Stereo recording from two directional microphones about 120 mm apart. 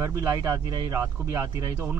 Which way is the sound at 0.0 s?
25° right (ahead or behind).